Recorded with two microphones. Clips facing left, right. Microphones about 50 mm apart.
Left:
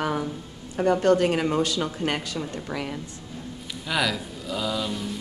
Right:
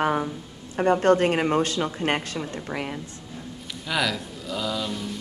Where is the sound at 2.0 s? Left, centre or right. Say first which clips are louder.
Right 2 dB; right.